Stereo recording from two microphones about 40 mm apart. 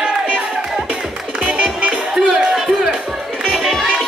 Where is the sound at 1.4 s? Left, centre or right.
Right.